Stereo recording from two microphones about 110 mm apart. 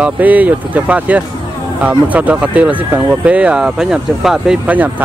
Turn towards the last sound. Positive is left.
turn(degrees=-10)  # may be behind; listen again after turning